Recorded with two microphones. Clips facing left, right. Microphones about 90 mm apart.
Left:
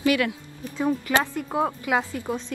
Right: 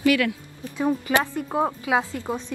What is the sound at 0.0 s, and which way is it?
Speech, 25° left (ahead or behind).